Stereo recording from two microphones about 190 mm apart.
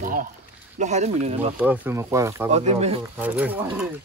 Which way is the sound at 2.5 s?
35° right (ahead or behind).